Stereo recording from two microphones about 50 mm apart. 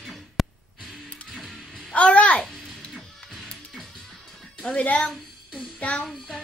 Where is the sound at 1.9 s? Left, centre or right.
Left.